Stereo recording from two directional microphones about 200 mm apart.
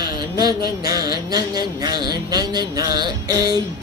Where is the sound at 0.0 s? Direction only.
20° right (ahead or behind).